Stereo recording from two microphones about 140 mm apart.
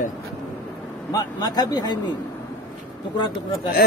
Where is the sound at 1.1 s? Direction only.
30° left (ahead or behind).